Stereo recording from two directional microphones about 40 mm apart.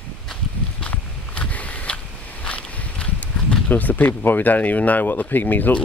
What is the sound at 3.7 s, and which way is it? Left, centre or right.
Speech, left.